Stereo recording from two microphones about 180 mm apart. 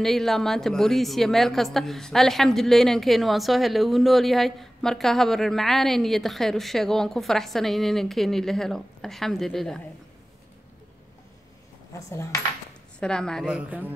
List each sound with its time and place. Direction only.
0.0 s a woman's voice: centre (ahead or behind)
11.9 s cutlery: 15° left (ahead or behind)
13.0 s a woman's voice: 5° left (ahead or behind)